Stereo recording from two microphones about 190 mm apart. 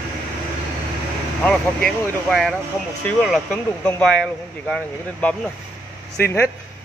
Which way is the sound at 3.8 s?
5° left (ahead or behind).